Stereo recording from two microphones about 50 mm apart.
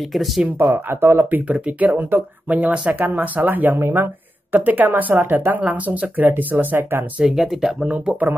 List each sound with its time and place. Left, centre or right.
0.6 s speech: right
1.3 s speech: right
3.8 s a sound: right
4.6 s speech: right
7.2 s speech: centre
7.8 s speech: centre
8.1 s speech: right